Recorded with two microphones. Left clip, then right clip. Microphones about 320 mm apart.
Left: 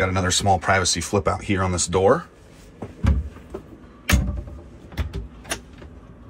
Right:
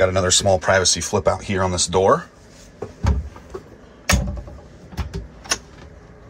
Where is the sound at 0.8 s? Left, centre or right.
Right.